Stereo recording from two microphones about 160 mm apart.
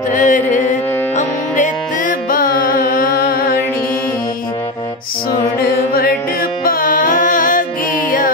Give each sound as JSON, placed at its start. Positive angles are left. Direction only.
{"t": 0.1, "sound": "music", "side_deg": 50}
{"t": 5.6, "sound": "music", "side_deg": 75}
{"t": 6.6, "sound": "music", "side_deg": 60}